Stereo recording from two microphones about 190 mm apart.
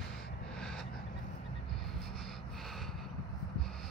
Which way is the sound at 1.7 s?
Centre (ahead or behind).